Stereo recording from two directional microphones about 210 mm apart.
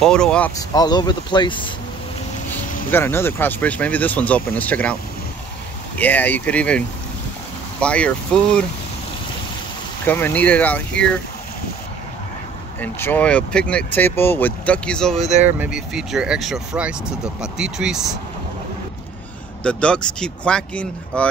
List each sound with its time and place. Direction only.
0.0 s speech: 5° left (ahead or behind)
0.6 s speech: 20° left (ahead or behind)
2.5 s speech: 10° left (ahead or behind)
5.9 s speech: 10° left (ahead or behind)
7.8 s speech: 5° left (ahead or behind)
10.0 s speech: 10° left (ahead or behind)
12.8 s speech: 10° left (ahead or behind)
15.2 s speech: 35° right (ahead or behind)
15.6 s speech: 5° right (ahead or behind)
19.6 s speech: 5° left (ahead or behind)